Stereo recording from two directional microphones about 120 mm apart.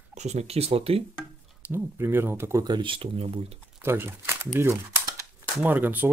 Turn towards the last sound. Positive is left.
turn(degrees=-15)  # may be behind; listen again after turning